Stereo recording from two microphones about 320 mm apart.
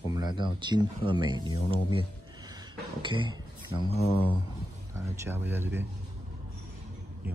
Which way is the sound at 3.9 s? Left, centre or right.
Centre.